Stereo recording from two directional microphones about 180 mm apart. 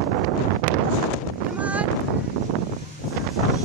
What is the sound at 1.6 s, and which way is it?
Wind noise, 10° right (ahead or behind).